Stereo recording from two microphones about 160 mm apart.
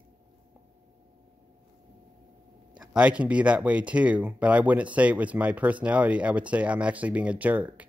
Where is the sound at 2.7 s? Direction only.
5° right (ahead or behind).